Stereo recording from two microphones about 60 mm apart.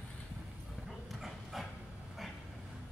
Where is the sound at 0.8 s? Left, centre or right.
Centre.